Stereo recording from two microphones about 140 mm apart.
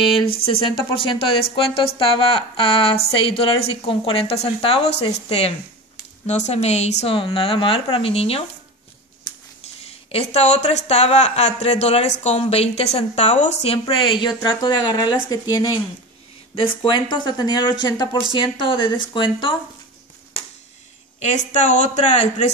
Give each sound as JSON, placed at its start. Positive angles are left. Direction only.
{"t": 0.5, "sound": "speech", "side_deg": 40}
{"t": 9.8, "sound": "speech", "side_deg": 50}
{"t": 16.5, "sound": "speech", "side_deg": 40}
{"t": 21.2, "sound": "speech", "side_deg": 60}